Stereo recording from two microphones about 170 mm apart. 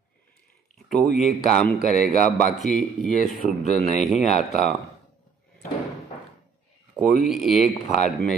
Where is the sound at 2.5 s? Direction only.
Centre (ahead or behind).